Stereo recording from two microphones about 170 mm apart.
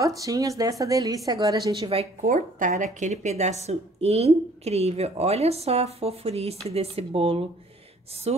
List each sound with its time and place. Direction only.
0.0 s a woman's voice: 20° right (ahead or behind)
2.2 s a woman's voice: 50° right (ahead or behind)